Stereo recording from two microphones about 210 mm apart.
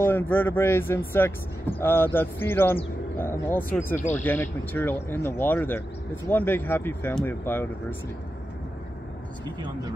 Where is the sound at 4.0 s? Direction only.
35° left (ahead or behind).